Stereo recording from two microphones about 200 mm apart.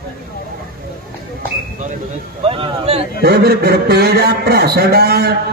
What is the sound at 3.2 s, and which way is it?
A man's voice, 50° right (ahead or behind).